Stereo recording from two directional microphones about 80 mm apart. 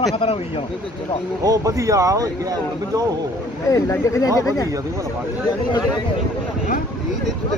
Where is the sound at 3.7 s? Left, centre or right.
Left.